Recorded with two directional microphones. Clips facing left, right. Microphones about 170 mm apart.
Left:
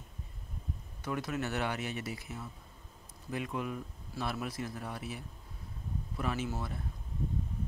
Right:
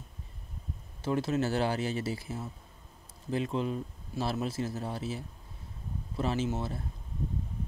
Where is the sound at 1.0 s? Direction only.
30° right (ahead or behind).